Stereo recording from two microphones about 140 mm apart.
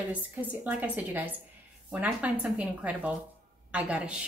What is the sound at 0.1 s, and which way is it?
A woman's voice, 10° right (ahead or behind).